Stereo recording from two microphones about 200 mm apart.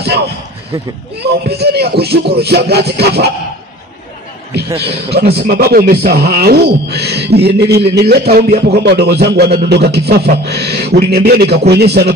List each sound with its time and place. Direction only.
0.0 s basketball bounce: 55° right (ahead or behind)
1.2 s speech: 55° right (ahead or behind)
4.7 s speech: 55° right (ahead or behind)